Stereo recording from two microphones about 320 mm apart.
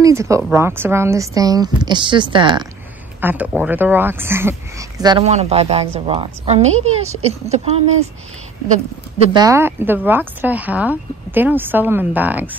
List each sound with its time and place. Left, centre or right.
0.0 s a woman's voice: centre
9.3 s speech: centre